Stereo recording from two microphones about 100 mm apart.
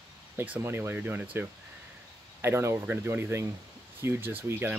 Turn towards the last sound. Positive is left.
turn(degrees=-20)  # may be behind; listen again after turning